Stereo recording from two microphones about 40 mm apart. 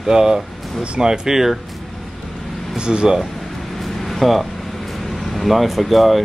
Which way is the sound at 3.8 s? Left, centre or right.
Centre.